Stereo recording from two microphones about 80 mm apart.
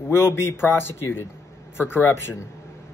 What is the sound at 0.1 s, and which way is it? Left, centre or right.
A man's voice, left.